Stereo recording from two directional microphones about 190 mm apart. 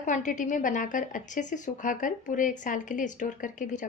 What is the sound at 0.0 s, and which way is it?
A woman's voice, 40° left (ahead or behind).